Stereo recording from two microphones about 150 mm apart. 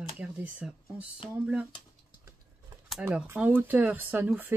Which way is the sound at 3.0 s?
15° right (ahead or behind).